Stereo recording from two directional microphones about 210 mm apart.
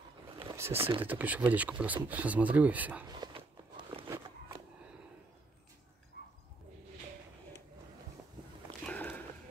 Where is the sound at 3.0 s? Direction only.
20° right (ahead or behind).